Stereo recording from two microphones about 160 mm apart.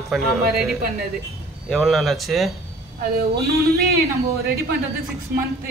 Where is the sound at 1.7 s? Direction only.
Centre (ahead or behind).